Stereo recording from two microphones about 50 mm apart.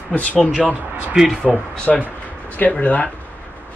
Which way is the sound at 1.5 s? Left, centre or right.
Centre.